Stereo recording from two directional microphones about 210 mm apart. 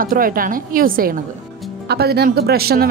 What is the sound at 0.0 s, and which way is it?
A woman's voice, 40° right (ahead or behind).